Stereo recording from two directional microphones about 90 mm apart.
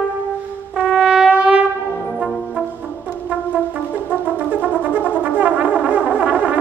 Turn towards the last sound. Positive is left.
turn(degrees=-15)  # may be behind; listen again after turning